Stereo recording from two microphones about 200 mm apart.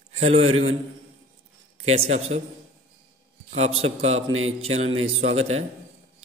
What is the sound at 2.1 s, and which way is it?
Speech, 35° right (ahead or behind).